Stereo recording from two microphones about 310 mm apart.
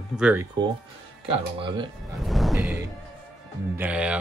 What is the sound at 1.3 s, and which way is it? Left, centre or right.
Speech, centre.